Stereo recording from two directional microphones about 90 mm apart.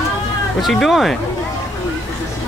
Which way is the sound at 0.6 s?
Centre (ahead or behind).